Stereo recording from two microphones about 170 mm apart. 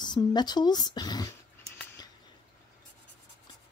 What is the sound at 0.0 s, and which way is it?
Speech, 25° left (ahead or behind).